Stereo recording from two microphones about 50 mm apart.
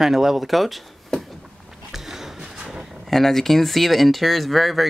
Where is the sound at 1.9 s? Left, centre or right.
Centre.